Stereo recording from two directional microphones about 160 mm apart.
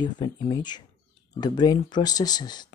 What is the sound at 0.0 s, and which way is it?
Speech, 30° left (ahead or behind).